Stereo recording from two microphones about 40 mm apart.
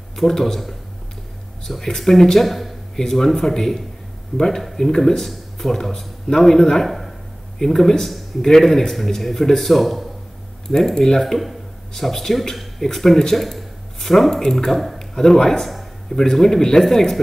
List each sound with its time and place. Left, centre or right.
0.1 s speech: centre
2.0 s speech: centre
11.0 s a man's voice: centre